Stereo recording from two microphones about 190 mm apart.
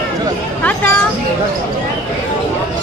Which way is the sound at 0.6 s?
10° left (ahead or behind).